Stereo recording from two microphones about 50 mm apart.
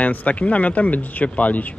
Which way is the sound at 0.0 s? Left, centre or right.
Left.